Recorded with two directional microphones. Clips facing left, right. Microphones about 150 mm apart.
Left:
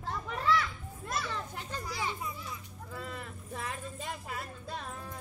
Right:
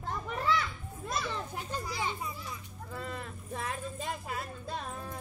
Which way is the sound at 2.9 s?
Centre (ahead or behind).